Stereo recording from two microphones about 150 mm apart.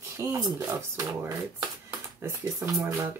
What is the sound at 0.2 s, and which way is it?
Speech, 20° right (ahead or behind).